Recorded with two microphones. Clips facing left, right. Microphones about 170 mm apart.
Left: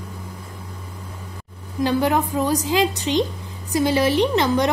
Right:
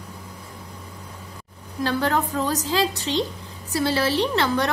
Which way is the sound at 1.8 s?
15° left (ahead or behind).